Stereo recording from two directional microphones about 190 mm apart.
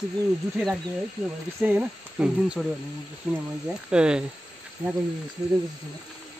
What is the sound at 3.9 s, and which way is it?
Speech, 5° right (ahead or behind).